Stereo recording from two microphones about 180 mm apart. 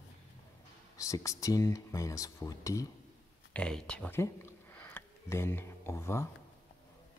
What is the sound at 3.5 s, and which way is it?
Speech, 5° left (ahead or behind).